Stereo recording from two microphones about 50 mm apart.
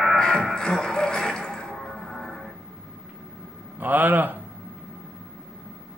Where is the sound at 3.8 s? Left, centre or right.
Right.